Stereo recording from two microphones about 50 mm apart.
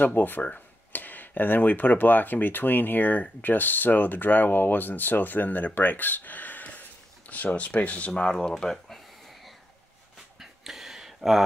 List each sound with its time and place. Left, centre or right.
0.0 s speech: left
8.1 s speech: centre
10.4 s a sound: centre